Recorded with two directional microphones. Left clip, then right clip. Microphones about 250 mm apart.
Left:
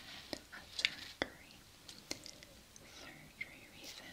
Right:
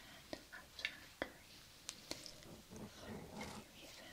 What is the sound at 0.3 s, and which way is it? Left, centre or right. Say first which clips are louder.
Whispering: left 2 dB; centre.